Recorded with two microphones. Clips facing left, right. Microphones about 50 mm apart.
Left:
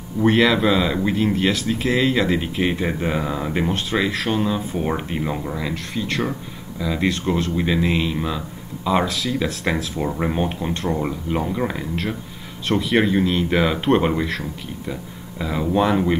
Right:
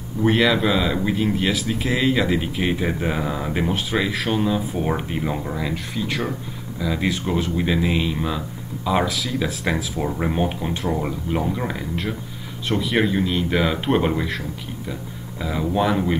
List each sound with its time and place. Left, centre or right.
0.2 s speech: centre